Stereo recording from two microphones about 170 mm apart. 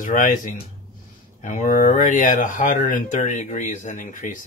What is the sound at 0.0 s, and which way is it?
Speech, 50° left (ahead or behind).